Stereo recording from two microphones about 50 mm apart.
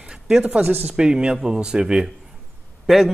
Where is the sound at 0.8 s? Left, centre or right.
Centre.